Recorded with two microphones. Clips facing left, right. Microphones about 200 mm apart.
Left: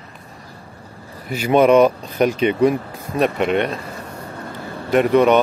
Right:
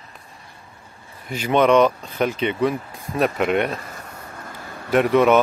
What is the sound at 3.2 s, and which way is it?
Speech, centre (ahead or behind).